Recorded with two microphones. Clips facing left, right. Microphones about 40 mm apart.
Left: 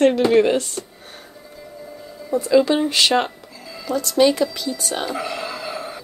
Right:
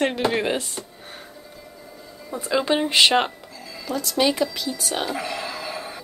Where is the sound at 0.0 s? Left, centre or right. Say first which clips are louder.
Left 7 dB; centre.